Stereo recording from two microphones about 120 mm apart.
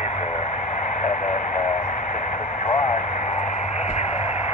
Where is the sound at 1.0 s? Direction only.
80° left.